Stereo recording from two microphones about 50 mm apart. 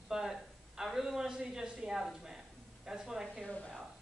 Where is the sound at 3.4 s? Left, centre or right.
Centre.